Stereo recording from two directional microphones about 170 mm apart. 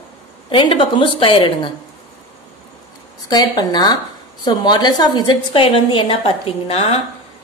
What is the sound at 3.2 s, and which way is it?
A woman's voice, 25° left (ahead or behind).